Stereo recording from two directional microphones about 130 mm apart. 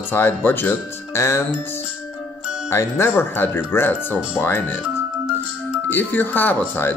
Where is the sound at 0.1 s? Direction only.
15° left (ahead or behind).